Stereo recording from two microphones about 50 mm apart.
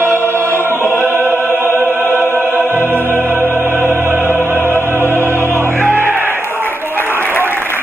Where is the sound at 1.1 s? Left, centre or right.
Right.